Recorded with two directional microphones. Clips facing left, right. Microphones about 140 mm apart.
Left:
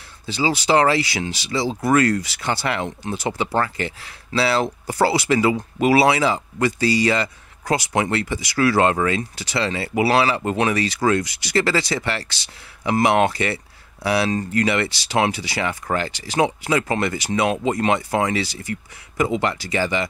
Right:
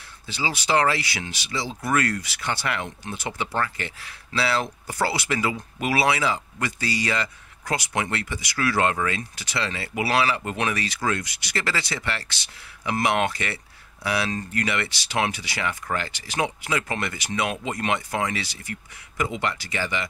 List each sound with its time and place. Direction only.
0.3 s speech: 35° left (ahead or behind)